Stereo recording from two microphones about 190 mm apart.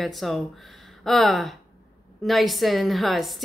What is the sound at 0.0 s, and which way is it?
A woman's voice, centre (ahead or behind).